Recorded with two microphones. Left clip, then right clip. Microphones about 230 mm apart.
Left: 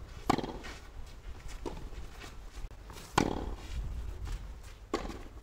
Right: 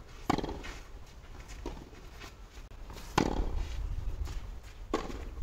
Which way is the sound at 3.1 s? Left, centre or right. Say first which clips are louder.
Even; left.